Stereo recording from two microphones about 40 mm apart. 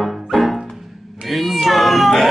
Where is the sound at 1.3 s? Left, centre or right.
Centre.